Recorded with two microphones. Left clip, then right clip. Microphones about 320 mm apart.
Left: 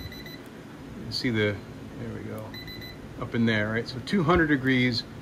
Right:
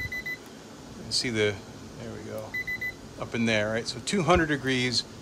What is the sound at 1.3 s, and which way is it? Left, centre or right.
Speech, right.